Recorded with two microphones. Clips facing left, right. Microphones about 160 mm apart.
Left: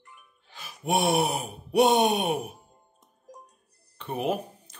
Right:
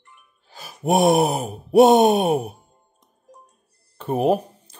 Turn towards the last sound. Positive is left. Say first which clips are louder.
# right 9 dB
turn(degrees=-35)  # may be behind; listen again after turning